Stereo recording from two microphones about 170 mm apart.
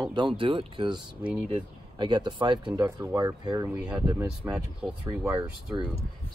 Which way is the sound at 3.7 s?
5° right (ahead or behind).